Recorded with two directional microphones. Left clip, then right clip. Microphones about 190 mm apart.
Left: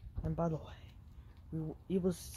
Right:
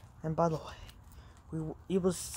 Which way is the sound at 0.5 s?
20° right (ahead or behind).